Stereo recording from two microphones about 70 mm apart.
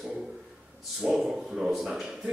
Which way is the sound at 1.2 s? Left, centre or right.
Centre.